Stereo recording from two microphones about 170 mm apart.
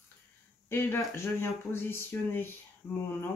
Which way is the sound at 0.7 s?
15° left (ahead or behind).